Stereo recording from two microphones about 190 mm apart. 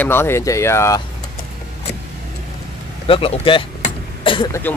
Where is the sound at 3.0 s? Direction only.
30° left (ahead or behind).